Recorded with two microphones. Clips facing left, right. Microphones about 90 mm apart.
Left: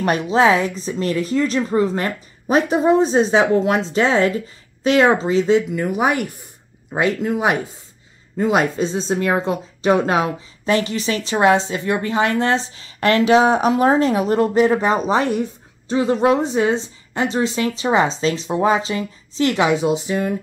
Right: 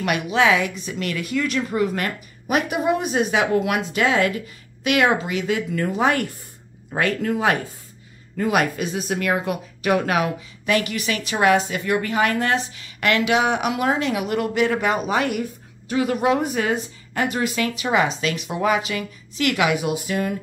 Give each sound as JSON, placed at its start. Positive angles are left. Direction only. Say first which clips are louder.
{"t": 0.0, "sound": "speech", "louder": "left 4 dB", "side_deg": 35}